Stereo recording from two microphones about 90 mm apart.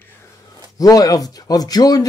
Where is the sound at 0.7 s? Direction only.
40° left (ahead or behind).